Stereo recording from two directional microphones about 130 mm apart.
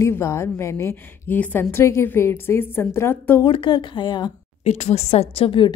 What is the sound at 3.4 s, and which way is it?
Speech, 40° left (ahead or behind).